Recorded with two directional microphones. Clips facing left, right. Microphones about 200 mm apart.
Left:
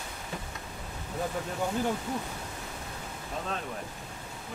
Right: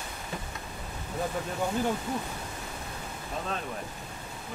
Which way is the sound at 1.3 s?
20° right (ahead or behind).